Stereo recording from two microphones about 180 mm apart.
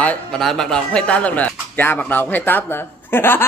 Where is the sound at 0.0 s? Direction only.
5° left (ahead or behind).